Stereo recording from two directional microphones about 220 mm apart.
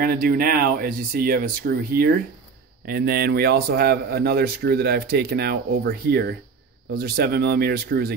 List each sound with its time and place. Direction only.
0.0 s a man's voice: 40° right (ahead or behind)